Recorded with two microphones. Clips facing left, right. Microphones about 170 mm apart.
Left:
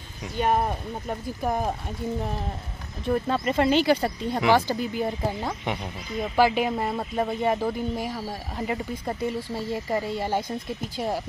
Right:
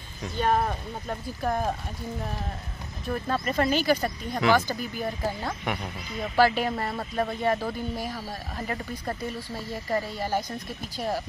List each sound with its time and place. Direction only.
0.2 s speech: 15° left (ahead or behind)
3.1 s speech: 20° left (ahead or behind)